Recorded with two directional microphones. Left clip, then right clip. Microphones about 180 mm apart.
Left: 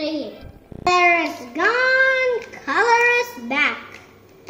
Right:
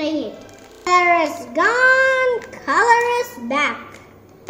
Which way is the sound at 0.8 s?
20° left (ahead or behind).